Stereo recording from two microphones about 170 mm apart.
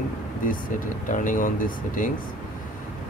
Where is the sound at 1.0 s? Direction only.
50° left (ahead or behind).